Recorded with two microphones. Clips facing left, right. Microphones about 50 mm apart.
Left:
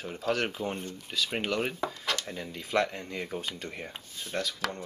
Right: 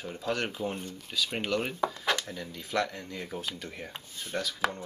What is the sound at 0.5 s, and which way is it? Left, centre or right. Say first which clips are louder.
Speech: even; centre.